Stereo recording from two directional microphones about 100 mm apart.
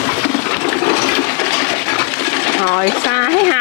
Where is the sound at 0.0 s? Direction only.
25° left (ahead or behind).